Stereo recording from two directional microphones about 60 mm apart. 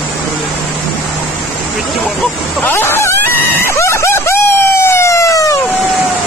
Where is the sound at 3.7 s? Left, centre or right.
Left.